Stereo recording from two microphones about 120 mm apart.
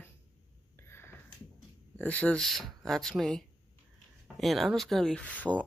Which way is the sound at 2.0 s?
15° left (ahead or behind).